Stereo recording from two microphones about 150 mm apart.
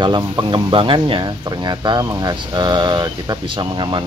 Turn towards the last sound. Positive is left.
turn(degrees=-30)  # may be behind; listen again after turning